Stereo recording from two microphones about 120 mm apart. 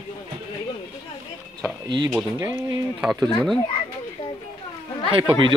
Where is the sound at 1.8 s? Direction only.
40° right (ahead or behind).